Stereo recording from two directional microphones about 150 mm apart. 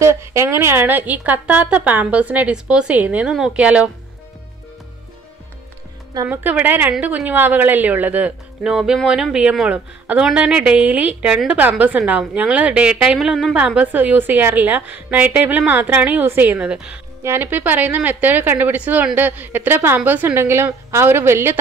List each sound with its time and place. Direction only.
0.0 s a woman's voice: 20° right (ahead or behind)
6.2 s a woman's voice: 10° right (ahead or behind)